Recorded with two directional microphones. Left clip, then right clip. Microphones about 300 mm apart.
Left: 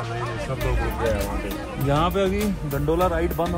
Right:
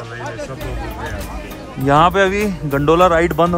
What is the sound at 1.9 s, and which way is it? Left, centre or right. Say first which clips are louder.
Speech: right 10 dB; right.